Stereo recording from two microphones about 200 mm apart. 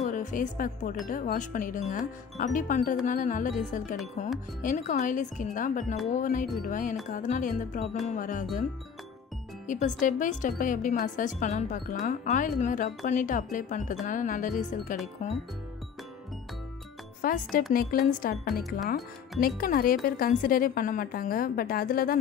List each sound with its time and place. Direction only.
0.0 s speech: 40° left (ahead or behind)
9.7 s speech: 40° left (ahead or behind)
17.2 s a woman's voice: 45° left (ahead or behind)